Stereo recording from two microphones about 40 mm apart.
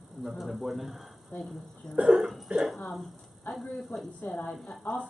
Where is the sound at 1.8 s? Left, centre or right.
Centre.